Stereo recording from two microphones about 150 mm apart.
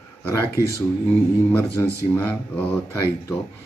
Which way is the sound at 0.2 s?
20° left (ahead or behind).